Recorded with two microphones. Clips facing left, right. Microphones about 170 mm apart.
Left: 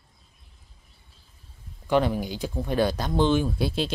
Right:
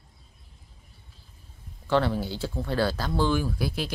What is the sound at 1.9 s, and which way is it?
Speech, 15° left (ahead or behind).